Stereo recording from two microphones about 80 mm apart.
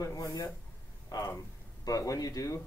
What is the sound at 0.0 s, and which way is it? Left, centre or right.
Speech, left.